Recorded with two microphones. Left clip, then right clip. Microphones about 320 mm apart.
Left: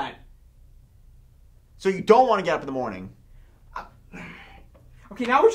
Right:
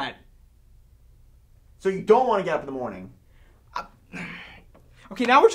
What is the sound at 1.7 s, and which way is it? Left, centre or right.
Speech, right.